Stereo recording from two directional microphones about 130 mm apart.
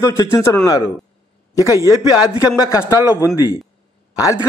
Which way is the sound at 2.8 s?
25° left (ahead or behind).